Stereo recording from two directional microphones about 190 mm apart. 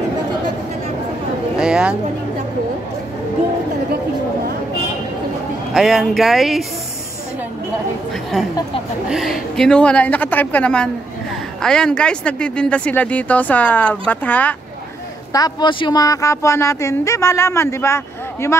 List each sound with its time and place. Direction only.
1.6 s a sound: 5° right (ahead or behind)
5.7 s speech: centre (ahead or behind)
9.1 s speech: centre (ahead or behind)
15.3 s speech: 20° left (ahead or behind)